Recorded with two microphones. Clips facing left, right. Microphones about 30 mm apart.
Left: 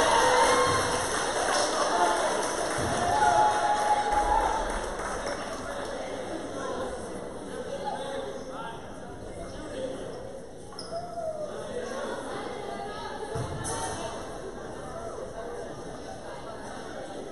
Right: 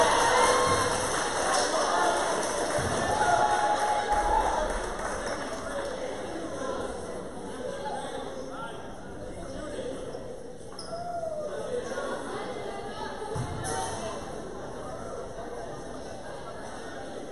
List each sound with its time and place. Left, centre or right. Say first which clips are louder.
0.0 s music: left 1 dB; centre
4.3 s a sound: even; centre
5.0 s run: even; centre
6.6 s a sound: even; centre
12.0 s music: right 1 dB; centre
13.7 s music: right 1 dB; centre